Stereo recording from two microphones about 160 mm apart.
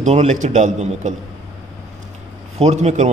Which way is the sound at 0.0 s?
45° right (ahead or behind).